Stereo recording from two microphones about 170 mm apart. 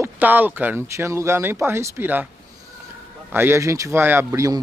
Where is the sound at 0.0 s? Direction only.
10° right (ahead or behind).